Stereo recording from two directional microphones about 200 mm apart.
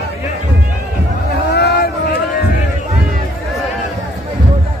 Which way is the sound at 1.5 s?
55° left (ahead or behind).